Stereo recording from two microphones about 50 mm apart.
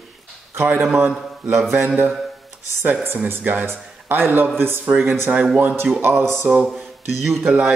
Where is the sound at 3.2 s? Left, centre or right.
Right.